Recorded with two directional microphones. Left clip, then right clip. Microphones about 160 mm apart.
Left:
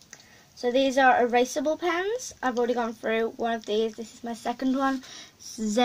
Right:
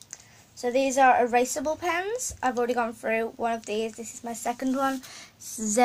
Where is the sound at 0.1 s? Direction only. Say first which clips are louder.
Even; 20° left (ahead or behind).